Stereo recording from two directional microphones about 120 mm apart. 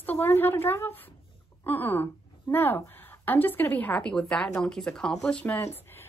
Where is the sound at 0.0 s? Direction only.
15° left (ahead or behind).